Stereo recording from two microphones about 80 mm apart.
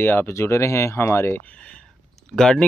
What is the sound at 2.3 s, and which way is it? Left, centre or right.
Speech, centre.